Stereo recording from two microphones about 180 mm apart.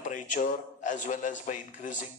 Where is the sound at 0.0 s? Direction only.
45° left (ahead or behind).